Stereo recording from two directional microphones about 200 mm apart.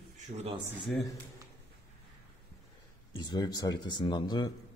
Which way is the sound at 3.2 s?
20° left (ahead or behind).